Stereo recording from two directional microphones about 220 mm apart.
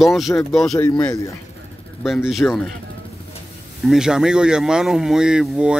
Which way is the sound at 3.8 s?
Centre (ahead or behind).